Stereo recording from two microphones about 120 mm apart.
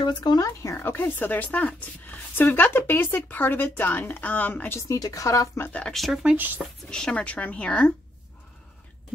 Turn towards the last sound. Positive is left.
turn(degrees=10)  # may be behind; listen again after turning